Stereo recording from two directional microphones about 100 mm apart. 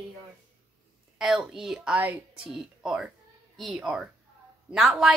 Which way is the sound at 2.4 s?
5° right (ahead or behind).